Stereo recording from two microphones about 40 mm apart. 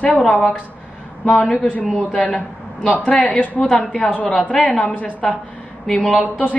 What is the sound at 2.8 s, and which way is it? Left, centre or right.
Speech, left.